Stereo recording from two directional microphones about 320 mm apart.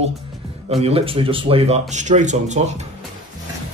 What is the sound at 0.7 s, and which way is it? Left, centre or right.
Speech, centre.